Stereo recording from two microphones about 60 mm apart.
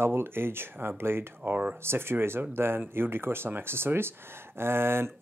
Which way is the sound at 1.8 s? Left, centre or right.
Right.